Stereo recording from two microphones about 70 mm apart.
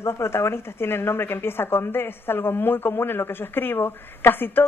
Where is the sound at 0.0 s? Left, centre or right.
Left.